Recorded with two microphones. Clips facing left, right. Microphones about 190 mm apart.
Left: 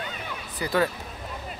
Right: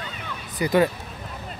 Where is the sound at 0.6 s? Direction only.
20° right (ahead or behind).